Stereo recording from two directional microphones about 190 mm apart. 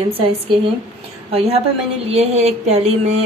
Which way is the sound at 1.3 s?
30° right (ahead or behind).